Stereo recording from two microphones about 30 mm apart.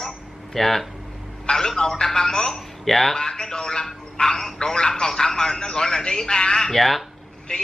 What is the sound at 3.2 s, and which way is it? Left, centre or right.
Speech, left.